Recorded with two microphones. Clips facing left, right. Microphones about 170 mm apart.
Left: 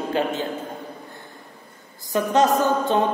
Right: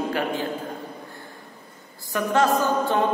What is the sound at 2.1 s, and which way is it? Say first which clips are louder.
Speech: left 2 dB; 20° left (ahead or behind).